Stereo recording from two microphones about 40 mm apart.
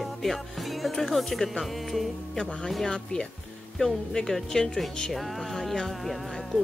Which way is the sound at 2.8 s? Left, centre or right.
Centre.